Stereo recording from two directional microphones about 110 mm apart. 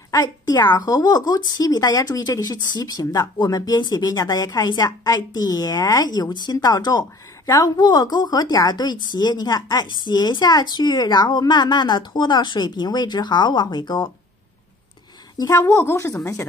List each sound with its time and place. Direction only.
0.1 s speech: 35° left (ahead or behind)
15.3 s a woman's voice: 30° left (ahead or behind)